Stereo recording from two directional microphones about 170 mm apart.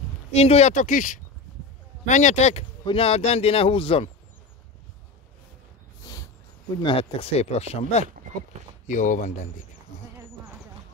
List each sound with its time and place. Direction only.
0.3 s speech: 40° left (ahead or behind)
6.8 s speech: 30° left (ahead or behind); by 9.3 s 50° left (ahead or behind)